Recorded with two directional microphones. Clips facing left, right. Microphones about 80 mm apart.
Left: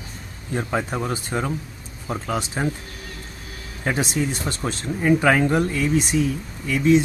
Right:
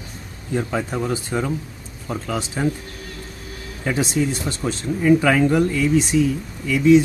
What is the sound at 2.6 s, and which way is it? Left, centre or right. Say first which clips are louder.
Speech: right 4 dB; left.